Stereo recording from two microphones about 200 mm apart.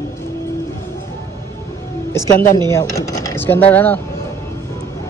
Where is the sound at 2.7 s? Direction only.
15° left (ahead or behind).